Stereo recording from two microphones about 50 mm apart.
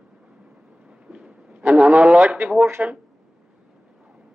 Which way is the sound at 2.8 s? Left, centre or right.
Right.